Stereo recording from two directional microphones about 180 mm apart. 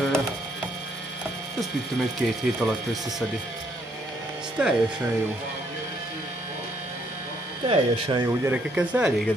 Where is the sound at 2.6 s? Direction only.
Centre (ahead or behind).